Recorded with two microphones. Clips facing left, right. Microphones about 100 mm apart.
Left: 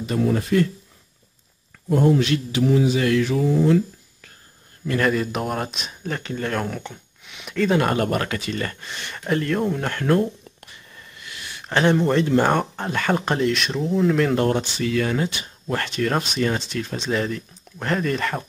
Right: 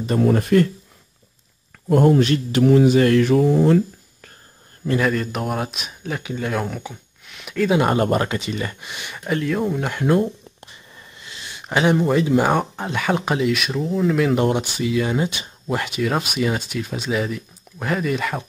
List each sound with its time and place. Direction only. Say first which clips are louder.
0.0 s mantra: right 3 dB; 45° right (ahead or behind)
1.9 s mantra: right 3 dB; 55° right (ahead or behind)
4.9 s speech: even; centre (ahead or behind)
7.8 s speech: right 3 dB; 25° right (ahead or behind)
10.6 s a sound: right 1 dB; 25° right (ahead or behind)
11.7 s speech: right 1 dB; 10° right (ahead or behind)
14.3 s speech: right 1 dB; 15° right (ahead or behind)